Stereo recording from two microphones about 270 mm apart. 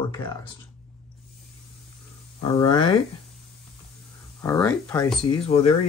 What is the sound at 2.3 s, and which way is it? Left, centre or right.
Speech, centre.